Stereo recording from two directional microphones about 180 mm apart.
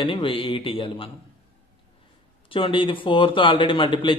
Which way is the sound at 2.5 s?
30° left (ahead or behind).